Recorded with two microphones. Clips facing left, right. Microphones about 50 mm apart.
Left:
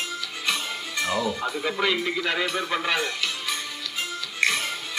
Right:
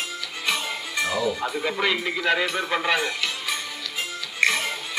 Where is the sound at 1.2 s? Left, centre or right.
Centre.